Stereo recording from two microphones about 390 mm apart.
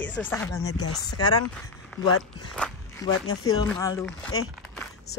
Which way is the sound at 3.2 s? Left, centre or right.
Left.